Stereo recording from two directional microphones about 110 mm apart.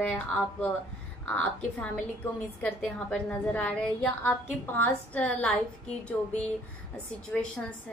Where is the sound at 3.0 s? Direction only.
10° left (ahead or behind).